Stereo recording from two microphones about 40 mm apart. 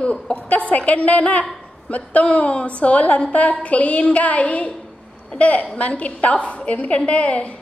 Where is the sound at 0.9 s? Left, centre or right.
Left.